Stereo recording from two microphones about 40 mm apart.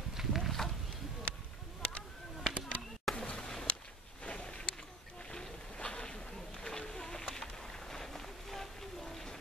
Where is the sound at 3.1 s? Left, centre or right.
Left.